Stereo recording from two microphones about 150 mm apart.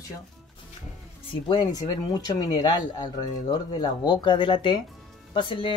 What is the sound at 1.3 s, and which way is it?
Speech, 30° left (ahead or behind).